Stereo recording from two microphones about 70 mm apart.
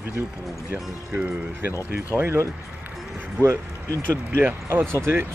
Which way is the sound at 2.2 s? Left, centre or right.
Right.